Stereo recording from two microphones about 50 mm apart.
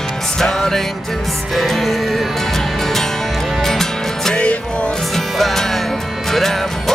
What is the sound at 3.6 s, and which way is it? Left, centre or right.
Music, centre.